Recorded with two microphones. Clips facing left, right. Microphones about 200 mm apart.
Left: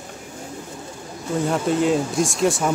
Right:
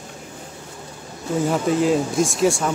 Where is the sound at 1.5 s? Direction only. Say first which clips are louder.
Right 1 dB; centre (ahead or behind).